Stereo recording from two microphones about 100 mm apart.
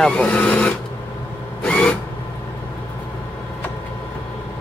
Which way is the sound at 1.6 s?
15° left (ahead or behind).